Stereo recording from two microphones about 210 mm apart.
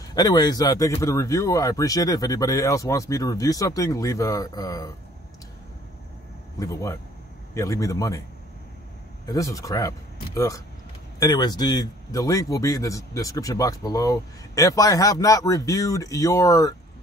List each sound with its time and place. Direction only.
0.1 s speech: 20° left (ahead or behind)
6.6 s speech: 15° left (ahead or behind)
9.3 s speech: 15° left (ahead or behind)